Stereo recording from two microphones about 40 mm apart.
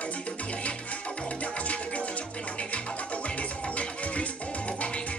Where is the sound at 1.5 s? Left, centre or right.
Left.